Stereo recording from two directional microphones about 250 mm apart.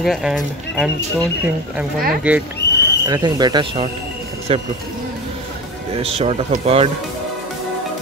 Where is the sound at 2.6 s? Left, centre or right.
Left.